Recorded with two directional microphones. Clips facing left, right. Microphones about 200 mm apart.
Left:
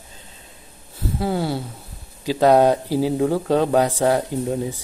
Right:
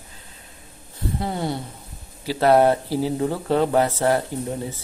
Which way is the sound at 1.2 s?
5° left (ahead or behind).